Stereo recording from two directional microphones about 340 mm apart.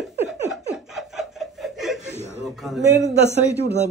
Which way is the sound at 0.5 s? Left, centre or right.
Centre.